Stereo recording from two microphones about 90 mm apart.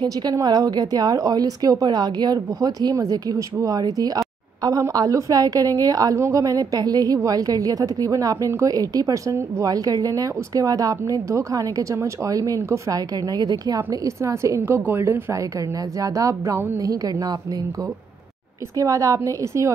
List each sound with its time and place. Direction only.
0.0 s a woman's voice: 45° right (ahead or behind)
13.8 s a woman's voice: 35° right (ahead or behind)
18.8 s a woman's voice: 40° right (ahead or behind)